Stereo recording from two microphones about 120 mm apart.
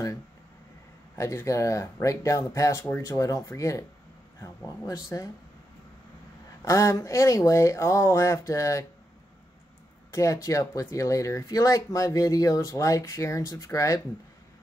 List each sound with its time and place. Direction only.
1.1 s speech: 25° left (ahead or behind)
4.8 s speech: 30° left (ahead or behind)
6.6 s speech: 25° left (ahead or behind)
10.1 s speech: 25° left (ahead or behind)